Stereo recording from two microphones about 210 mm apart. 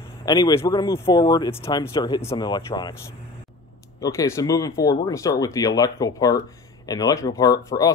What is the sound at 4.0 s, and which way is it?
Speech, 15° left (ahead or behind).